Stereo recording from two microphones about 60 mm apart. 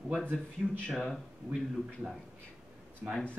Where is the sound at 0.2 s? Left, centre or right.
Left.